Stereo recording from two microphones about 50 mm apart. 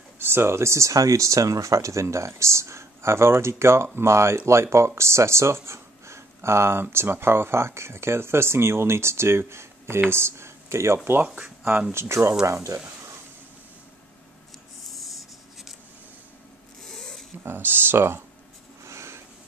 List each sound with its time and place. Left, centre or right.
0.2 s speech: right
11.2 s speech: right
11.9 s speech: right
14.9 s writing: centre
16.8 s a sound: centre
17.5 s speech: right
18.9 s a sound: right